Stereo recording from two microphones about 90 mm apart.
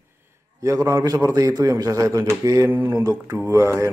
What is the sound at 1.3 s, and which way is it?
Speech, 50° right (ahead or behind).